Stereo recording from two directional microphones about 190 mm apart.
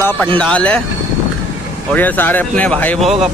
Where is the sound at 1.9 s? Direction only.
10° left (ahead or behind).